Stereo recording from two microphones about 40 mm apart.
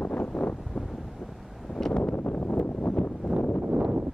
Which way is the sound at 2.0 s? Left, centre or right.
Left.